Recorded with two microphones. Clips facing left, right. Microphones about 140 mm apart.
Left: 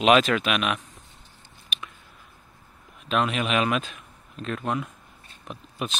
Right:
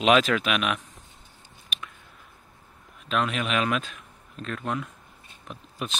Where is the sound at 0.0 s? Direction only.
Centre (ahead or behind).